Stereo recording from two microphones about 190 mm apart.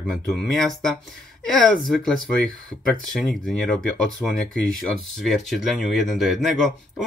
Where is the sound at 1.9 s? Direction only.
5° left (ahead or behind).